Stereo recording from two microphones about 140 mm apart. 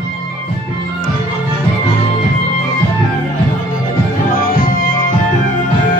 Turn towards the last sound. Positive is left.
turn(degrees=75)  # may be behind; listen again after turning